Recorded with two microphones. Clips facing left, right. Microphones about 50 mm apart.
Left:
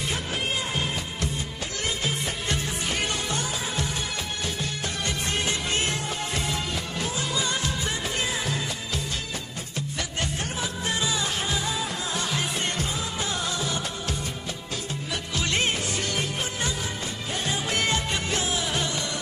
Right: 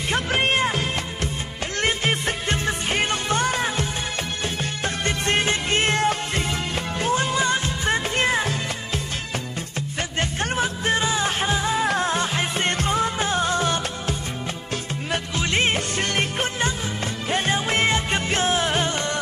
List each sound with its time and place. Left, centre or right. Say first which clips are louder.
0.1 s music: right 11 dB; right
1.8 s music: right 7 dB; right
11.8 s music: right 9 dB; right
12.1 s music: right 5 dB; right
15.3 s music: right 3 dB; right
15.7 s music: right 4 dB; right